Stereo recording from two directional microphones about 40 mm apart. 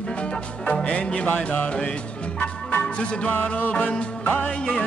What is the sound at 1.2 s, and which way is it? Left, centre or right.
Music, left.